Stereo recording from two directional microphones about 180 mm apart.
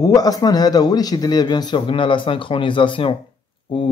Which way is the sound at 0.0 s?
20° left (ahead or behind).